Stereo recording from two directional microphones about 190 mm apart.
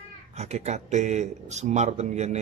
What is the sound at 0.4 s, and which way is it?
Speech, 35° right (ahead or behind).